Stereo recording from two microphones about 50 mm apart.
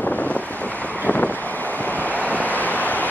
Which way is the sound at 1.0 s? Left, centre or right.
Left.